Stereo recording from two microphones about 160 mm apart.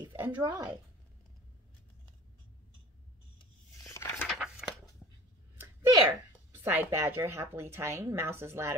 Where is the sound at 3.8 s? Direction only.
15° left (ahead or behind).